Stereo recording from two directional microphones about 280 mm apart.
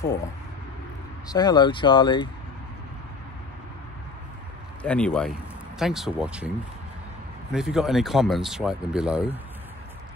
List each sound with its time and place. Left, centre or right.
1.3 s speech: centre
4.8 s speech: centre
7.5 s speech: centre